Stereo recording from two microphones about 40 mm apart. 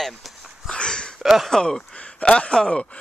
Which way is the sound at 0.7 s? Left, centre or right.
Left.